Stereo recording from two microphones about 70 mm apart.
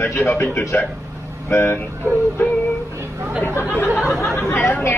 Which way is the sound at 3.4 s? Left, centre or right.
Left.